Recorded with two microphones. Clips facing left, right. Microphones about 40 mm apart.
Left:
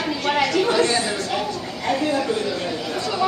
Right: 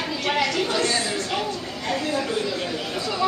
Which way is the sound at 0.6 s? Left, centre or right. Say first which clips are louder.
Left 4 dB; left.